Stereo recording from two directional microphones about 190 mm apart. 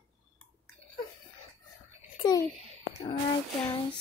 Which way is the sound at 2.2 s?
20° left (ahead or behind).